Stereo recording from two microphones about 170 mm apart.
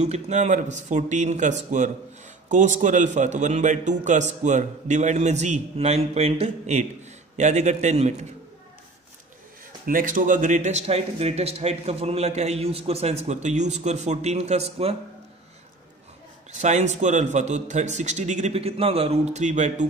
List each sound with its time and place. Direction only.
0.0 s a man's voice: 40° right (ahead or behind)
9.8 s a man's voice: 55° right (ahead or behind); by 15.0 s 35° right (ahead or behind)
16.5 s a man's voice: 45° right (ahead or behind)